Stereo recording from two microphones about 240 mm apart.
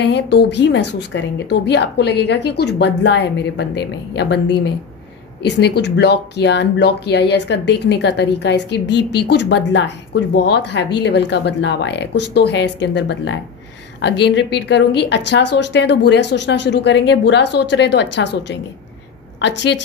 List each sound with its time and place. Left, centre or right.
0.0 s a woman's voice: left
5.4 s a woman's voice: left